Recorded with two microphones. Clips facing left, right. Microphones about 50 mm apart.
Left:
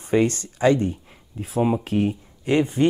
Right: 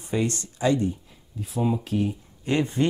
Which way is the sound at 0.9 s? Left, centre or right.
Left.